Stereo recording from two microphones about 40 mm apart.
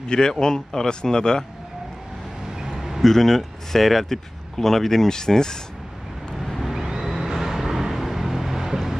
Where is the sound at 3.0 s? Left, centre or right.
Centre.